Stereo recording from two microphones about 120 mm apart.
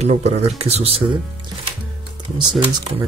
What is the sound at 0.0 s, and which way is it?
Speech, 65° right (ahead or behind).